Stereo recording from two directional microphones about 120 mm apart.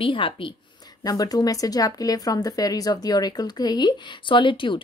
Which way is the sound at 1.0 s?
30° left (ahead or behind).